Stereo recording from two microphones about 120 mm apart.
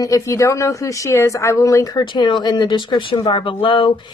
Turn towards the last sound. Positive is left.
turn(degrees=45)  # may be behind; listen again after turning